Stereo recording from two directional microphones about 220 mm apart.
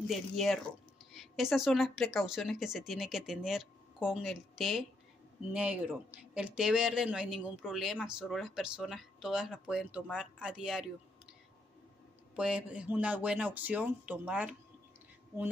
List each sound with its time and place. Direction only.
0.1 s speech: centre (ahead or behind)
12.4 s speech: 5° right (ahead or behind)